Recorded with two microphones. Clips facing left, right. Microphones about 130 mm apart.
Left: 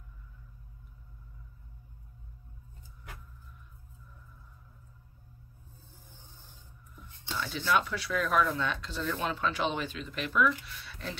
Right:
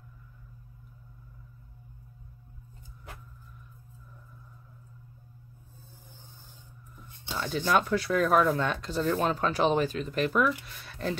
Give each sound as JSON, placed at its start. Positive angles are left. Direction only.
{"t": 7.3, "sound": "speech", "side_deg": -45}